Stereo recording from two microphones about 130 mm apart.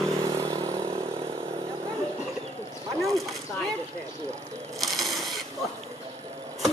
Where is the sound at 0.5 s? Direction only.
25° right (ahead or behind).